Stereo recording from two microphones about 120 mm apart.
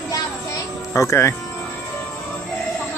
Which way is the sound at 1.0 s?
25° left (ahead or behind).